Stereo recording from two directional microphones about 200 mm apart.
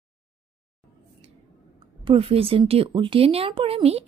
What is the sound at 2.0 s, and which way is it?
Speech, 30° right (ahead or behind).